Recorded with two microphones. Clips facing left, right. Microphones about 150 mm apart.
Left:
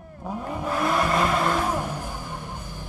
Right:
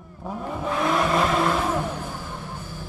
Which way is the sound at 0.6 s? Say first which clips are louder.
Right 1 dB; 5° left (ahead or behind).